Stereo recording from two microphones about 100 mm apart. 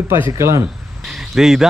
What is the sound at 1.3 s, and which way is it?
Speech, 5° right (ahead or behind).